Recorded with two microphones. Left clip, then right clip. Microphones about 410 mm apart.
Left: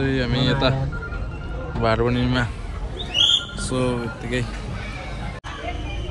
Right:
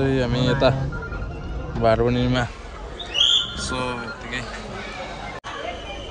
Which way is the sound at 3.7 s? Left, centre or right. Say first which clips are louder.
Left 2 dB; centre.